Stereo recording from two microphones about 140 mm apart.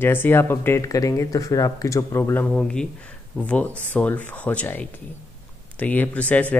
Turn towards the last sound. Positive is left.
turn(degrees=10)  # may be behind; listen again after turning